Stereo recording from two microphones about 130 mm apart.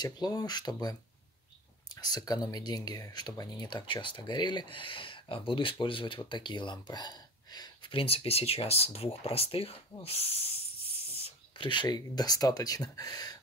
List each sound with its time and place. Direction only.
0.0 s speech: 30° left (ahead or behind)
2.0 s speech: 30° left (ahead or behind)
8.0 s speech: 45° left (ahead or behind); by 13.4 s 30° left (ahead or behind)